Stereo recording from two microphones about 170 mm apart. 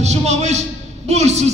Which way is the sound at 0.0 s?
40° right (ahead or behind).